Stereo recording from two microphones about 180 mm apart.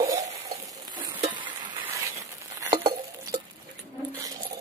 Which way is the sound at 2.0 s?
15° right (ahead or behind).